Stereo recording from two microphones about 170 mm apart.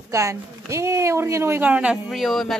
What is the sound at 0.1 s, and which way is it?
A woman's voice, 15° right (ahead or behind).